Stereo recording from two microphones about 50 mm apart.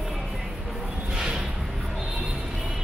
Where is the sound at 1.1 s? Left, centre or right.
Centre.